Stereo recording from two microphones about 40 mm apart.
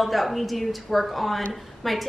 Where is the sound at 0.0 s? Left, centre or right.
Centre.